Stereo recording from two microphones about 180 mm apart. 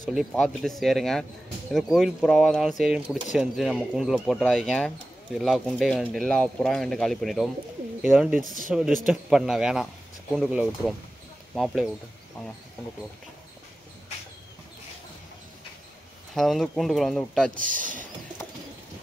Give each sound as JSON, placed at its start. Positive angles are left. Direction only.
{"t": 0.1, "sound": "speech", "side_deg": 0}
{"t": 16.3, "sound": "speech", "side_deg": 0}
{"t": 17.6, "sound": "speech", "side_deg": -45}